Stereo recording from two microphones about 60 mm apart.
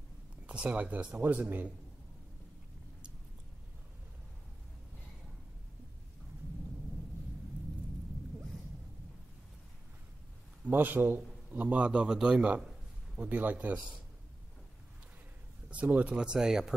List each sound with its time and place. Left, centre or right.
0.5 s a man's voice: right
1.1 s a man's voice: right
10.7 s a man's voice: right; by 12.6 s centre
13.2 s a man's voice: right
15.7 s speech: right